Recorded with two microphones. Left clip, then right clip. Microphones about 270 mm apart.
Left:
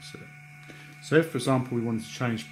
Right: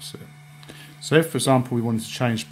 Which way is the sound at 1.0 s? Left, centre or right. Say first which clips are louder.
Right 4 dB; right.